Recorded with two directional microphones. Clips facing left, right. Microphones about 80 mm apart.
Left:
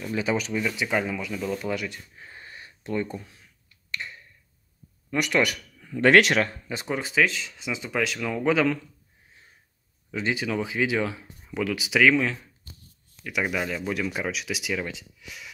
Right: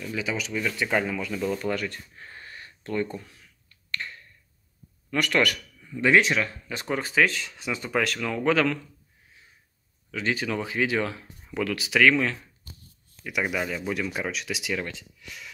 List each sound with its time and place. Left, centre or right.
0.0 s speech: left
0.5 s a man's voice: centre
5.8 s speech: left
6.9 s speech: centre
10.3 s speech: centre